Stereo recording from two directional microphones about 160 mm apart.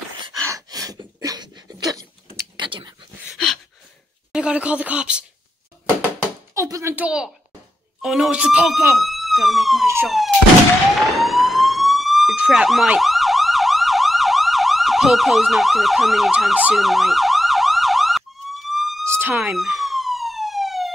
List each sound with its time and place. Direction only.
0.5 s a sound: 20° right (ahead or behind)
4.3 s speech: 5° right (ahead or behind)
6.5 s speech: 20° right (ahead or behind); by 10.3 s centre (ahead or behind)
11.1 s siren: centre (ahead or behind)
19.0 s a sound: 15° right (ahead or behind)
19.5 s police car: centre (ahead or behind)